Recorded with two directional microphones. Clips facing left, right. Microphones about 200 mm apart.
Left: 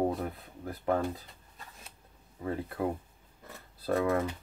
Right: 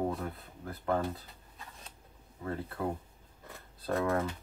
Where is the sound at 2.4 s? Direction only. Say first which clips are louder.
Left 3 dB; 15° left (ahead or behind).